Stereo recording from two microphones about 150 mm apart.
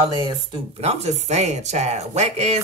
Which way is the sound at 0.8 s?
45° right (ahead or behind).